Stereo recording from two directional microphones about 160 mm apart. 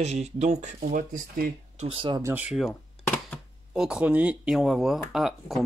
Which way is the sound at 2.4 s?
Centre (ahead or behind).